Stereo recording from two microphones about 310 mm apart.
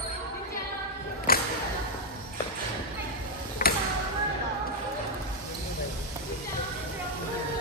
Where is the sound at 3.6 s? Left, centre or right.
Left.